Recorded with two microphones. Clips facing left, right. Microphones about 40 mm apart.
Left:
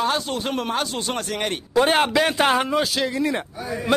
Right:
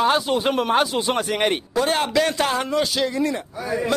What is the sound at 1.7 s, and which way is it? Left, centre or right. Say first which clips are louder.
Speech: left 6 dB; left.